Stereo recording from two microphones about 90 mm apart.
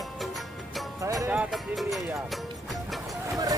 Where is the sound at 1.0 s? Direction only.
40° right (ahead or behind).